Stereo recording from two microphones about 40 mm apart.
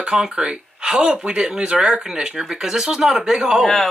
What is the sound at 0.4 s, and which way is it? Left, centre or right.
Speech, right.